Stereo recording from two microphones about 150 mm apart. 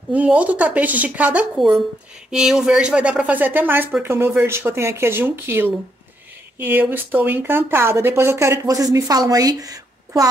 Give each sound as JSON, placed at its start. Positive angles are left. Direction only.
{"t": 0.1, "sound": "speech", "side_deg": -10}